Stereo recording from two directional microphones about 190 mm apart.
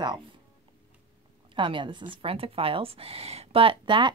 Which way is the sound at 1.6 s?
25° right (ahead or behind).